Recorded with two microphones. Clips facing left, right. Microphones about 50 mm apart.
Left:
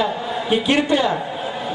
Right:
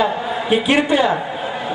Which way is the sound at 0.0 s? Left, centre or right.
Centre.